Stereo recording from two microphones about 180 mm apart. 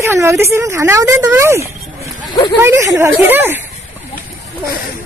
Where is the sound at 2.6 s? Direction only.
15° right (ahead or behind).